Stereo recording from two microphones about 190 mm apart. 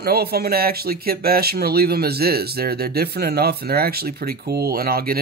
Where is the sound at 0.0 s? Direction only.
55° right (ahead or behind).